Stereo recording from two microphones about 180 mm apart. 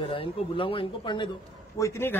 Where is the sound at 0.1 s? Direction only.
30° left (ahead or behind).